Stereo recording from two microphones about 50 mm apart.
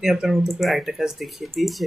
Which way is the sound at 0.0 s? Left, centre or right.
Centre.